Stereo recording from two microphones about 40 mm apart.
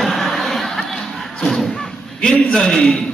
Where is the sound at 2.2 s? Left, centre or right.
Left.